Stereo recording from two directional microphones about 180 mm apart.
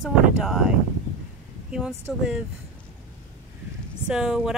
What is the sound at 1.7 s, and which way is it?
Speech, 5° right (ahead or behind).